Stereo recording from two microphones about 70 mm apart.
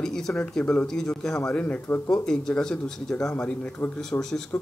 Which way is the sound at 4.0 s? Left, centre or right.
Centre.